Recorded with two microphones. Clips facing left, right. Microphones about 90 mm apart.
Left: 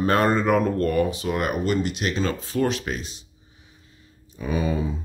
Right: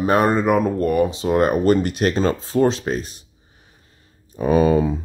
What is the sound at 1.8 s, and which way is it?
Speech, 45° right (ahead or behind).